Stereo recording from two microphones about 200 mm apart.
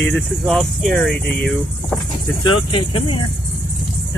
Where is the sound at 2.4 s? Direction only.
25° left (ahead or behind).